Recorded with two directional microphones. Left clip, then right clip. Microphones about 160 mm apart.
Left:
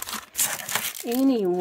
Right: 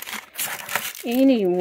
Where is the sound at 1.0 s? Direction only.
15° right (ahead or behind).